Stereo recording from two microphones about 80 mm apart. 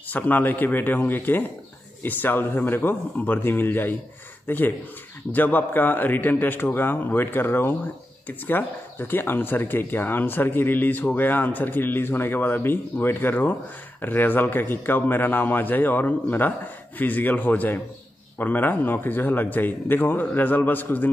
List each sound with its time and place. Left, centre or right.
0.1 s speech: left